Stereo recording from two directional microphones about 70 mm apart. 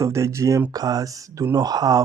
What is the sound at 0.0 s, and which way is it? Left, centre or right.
Speech, right.